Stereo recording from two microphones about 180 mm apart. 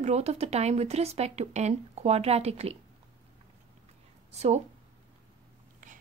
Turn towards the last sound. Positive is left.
turn(degrees=-45)  # may be behind; listen again after turning